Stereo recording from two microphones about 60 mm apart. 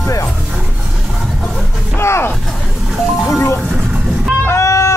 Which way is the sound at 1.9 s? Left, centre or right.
Left.